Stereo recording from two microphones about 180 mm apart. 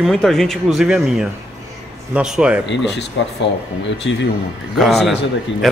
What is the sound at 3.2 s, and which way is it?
Speech, 90° left.